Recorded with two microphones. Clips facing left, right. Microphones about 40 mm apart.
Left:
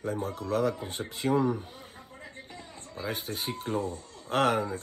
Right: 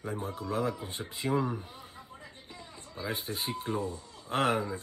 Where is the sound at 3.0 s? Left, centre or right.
Left.